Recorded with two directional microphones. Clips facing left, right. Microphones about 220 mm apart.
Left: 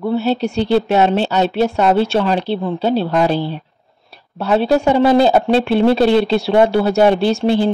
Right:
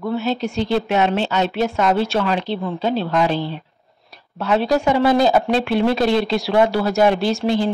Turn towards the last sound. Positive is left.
turn(degrees=30)  # may be behind; listen again after turning